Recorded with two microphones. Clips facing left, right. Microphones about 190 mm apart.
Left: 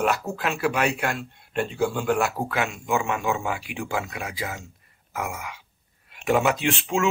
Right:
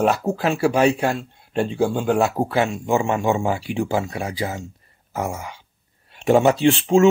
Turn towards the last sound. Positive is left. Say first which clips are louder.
# right 9 dB
turn(degrees=-30)  # may be behind; listen again after turning